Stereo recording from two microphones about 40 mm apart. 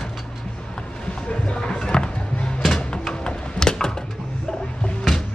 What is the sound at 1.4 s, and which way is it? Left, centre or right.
Music, left.